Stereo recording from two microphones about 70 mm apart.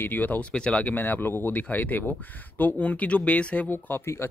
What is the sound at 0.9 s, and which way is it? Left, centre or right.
Speech, left.